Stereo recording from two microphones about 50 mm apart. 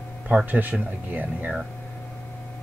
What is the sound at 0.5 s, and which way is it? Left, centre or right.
Speech, right.